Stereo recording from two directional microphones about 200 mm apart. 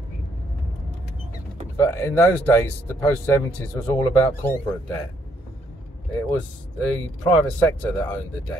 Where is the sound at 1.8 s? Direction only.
15° left (ahead or behind).